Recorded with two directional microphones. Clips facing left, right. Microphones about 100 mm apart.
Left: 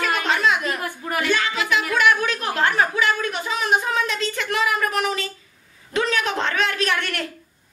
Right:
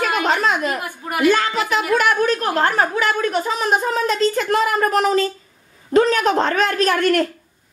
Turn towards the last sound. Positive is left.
turn(degrees=-40)  # may be behind; listen again after turning